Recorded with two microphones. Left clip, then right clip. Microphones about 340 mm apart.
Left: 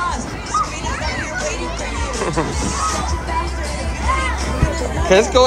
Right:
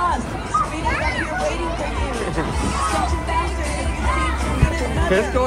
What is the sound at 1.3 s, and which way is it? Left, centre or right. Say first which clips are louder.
Music: right 1 dB; right.